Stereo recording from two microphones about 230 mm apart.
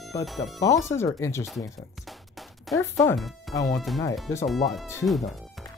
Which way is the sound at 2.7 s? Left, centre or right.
Centre.